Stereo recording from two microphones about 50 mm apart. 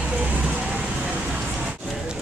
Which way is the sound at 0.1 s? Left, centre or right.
Right.